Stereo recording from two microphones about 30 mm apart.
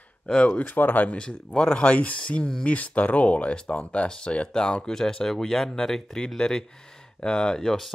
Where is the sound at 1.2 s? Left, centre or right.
Left.